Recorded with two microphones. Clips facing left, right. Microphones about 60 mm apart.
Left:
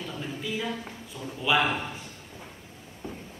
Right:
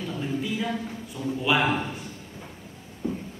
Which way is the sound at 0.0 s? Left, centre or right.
Centre.